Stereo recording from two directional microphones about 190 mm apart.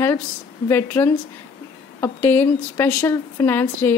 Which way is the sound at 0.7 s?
10° left (ahead or behind).